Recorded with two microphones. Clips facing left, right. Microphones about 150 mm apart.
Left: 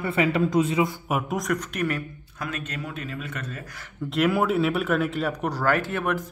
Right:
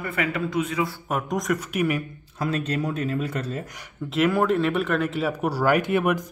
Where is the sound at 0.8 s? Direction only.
15° left (ahead or behind); by 2.0 s 10° right (ahead or behind).